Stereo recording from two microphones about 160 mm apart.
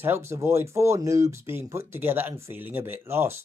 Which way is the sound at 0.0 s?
15° right (ahead or behind).